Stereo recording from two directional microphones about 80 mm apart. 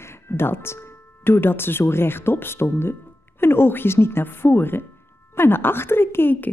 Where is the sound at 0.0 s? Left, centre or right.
Left.